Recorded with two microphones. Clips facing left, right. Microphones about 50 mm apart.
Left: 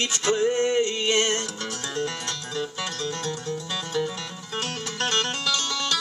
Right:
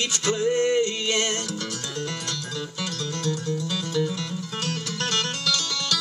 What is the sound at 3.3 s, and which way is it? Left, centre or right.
Music, left.